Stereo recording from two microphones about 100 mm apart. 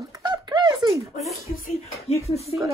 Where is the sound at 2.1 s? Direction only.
90° left.